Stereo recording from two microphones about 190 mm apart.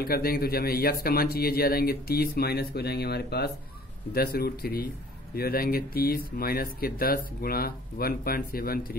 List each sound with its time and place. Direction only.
0.0 s speech: 50° left (ahead or behind)